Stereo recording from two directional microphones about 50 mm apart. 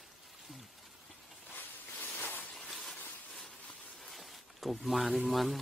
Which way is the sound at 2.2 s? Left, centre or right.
Left.